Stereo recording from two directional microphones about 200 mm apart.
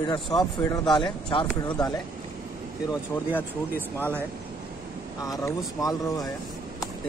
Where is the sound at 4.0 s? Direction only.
10° right (ahead or behind).